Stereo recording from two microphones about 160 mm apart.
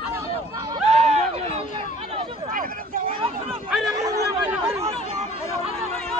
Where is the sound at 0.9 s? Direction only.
45° right (ahead or behind).